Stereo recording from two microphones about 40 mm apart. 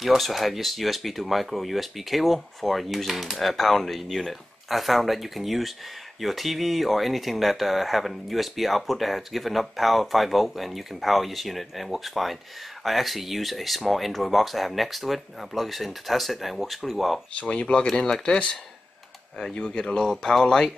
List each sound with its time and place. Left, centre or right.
0.0 s speech: centre
17.4 s speech: left